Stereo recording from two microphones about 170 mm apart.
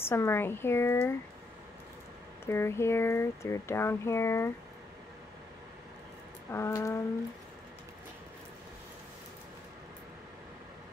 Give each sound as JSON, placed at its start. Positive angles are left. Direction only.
{"t": 0.1, "sound": "speech", "side_deg": 15}
{"t": 2.4, "sound": "speech", "side_deg": 15}
{"t": 6.5, "sound": "speech", "side_deg": 15}